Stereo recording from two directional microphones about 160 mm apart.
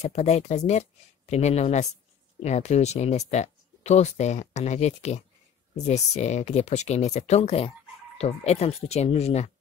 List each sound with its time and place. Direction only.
0.0 s speech: 45° left (ahead or behind)